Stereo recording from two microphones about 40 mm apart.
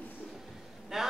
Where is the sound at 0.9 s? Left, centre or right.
Centre.